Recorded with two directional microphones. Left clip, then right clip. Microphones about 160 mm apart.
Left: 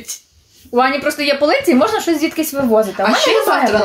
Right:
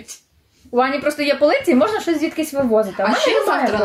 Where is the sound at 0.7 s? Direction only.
5° right (ahead or behind).